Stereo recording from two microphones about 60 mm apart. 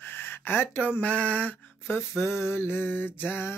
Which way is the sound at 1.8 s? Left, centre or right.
Left.